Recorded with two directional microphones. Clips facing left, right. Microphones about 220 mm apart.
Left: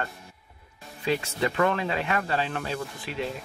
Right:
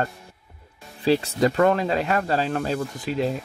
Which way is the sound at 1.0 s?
35° right (ahead or behind).